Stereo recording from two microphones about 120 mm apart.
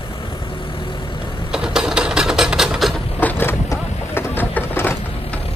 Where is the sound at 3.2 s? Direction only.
15° left (ahead or behind).